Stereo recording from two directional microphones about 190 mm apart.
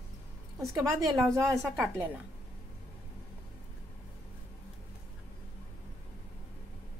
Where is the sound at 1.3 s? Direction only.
Centre (ahead or behind).